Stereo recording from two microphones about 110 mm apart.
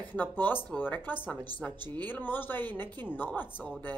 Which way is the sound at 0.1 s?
15° left (ahead or behind).